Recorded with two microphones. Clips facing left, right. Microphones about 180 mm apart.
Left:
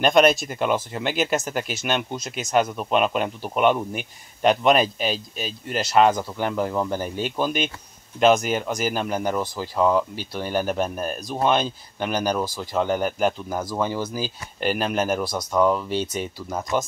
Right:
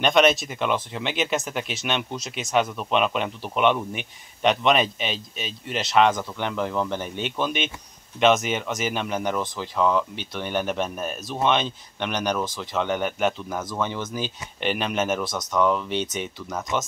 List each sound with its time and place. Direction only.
0.0 s speech: centre (ahead or behind)
16.7 s speech: 35° left (ahead or behind)